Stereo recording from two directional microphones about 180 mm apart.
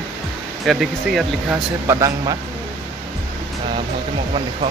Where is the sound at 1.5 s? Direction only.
15° right (ahead or behind).